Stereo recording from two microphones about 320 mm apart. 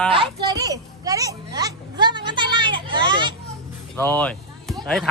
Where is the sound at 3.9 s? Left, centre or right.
Centre.